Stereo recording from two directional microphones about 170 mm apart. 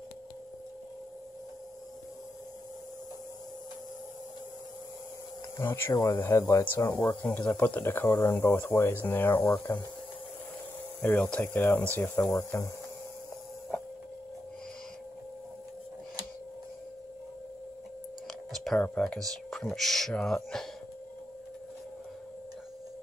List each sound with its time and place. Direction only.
5.6 s speech: 15° left (ahead or behind)
11.0 s speech: 10° left (ahead or behind)
18.5 s speech: centre (ahead or behind)